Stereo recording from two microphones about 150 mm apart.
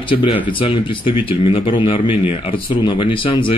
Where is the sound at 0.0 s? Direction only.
35° left (ahead or behind).